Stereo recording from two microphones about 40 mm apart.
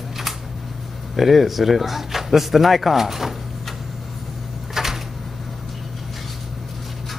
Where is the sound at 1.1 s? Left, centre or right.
Centre.